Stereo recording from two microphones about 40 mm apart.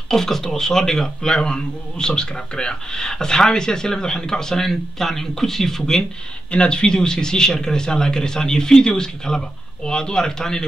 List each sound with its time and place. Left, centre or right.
0.1 s a man's voice: centre
6.5 s a man's voice: left